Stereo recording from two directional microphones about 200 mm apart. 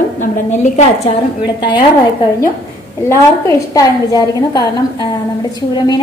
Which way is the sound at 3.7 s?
20° left (ahead or behind).